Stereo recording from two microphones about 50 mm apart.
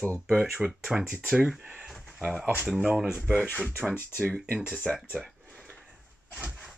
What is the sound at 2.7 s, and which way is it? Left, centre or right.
Speech, centre.